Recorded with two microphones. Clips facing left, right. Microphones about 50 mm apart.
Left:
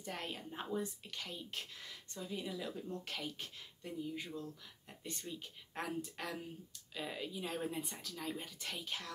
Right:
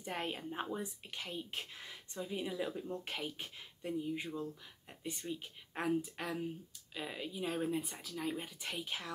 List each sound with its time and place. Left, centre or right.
0.0 s a woman's voice: right; by 8.1 s centre
8.1 s speech: centre